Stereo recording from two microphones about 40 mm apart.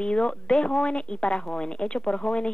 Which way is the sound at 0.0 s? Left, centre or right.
Left.